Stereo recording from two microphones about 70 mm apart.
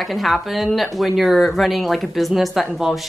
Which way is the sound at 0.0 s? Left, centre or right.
Centre.